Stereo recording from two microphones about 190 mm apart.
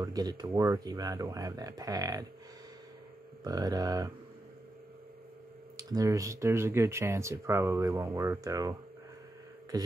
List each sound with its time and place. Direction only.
0.0 s speech: 20° right (ahead or behind)
3.4 s speech: 20° right (ahead or behind)
5.8 s speech: 20° right (ahead or behind)